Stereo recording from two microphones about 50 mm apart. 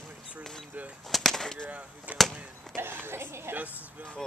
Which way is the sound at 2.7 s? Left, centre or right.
Right.